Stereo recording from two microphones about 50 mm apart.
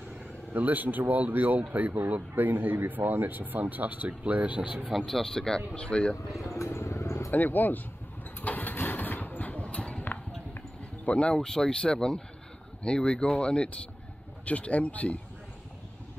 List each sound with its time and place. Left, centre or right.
0.5 s speech: right
4.9 s speech: centre
6.4 s vehicle: left
7.2 s speech: left
8.4 s engine: left
8.7 s vehicle: left
11.1 s speech: left